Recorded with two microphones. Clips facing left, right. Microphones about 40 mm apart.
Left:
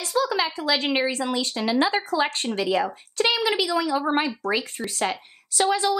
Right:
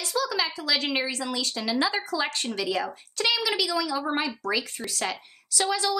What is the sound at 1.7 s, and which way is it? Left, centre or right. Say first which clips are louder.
Speech: left 4 dB; left.